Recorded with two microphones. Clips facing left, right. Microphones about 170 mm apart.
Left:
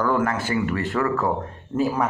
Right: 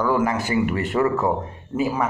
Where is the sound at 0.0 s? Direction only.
10° right (ahead or behind).